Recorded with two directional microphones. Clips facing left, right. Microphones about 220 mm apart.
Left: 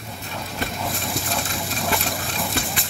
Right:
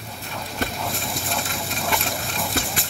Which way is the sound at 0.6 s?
Centre (ahead or behind).